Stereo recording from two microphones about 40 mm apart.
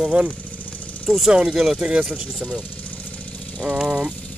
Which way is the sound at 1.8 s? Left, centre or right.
Right.